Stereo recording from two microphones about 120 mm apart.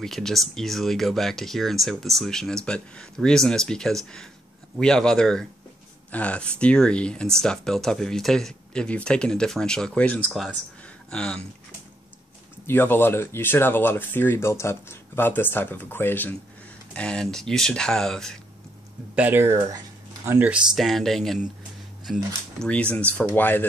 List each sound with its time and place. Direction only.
0.0 s speech: 5° left (ahead or behind)
12.6 s speech: 15° left (ahead or behind)
19.1 s speech: 15° right (ahead or behind)
20.2 s speech: 15° right (ahead or behind)
20.7 s speech: centre (ahead or behind)
22.7 s speech: 10° left (ahead or behind)